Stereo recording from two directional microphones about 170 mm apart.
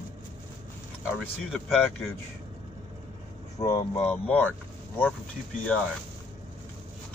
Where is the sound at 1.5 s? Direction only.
Centre (ahead or behind).